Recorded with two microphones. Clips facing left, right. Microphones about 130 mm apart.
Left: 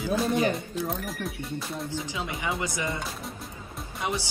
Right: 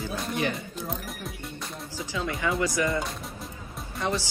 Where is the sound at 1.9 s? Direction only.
20° left (ahead or behind).